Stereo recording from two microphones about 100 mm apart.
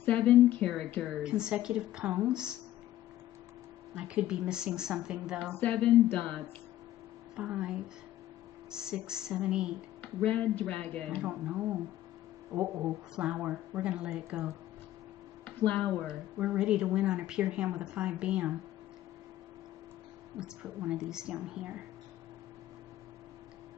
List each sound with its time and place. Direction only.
0.0 s a sound: 15° left (ahead or behind)
1.2 s speech: 10° right (ahead or behind)
3.9 s speech: 10° right (ahead or behind)
5.5 s a sound: 15° left (ahead or behind)
7.3 s speech: 10° right (ahead or behind)
10.2 s a sound: 15° left (ahead or behind)
11.2 s speech: 15° right (ahead or behind)
12.5 s speech: 30° right (ahead or behind)
13.1 s speech: 10° right (ahead or behind)
15.4 s a sound: 10° left (ahead or behind)
16.1 s speech: 10° right (ahead or behind)
20.3 s speech: 10° right (ahead or behind)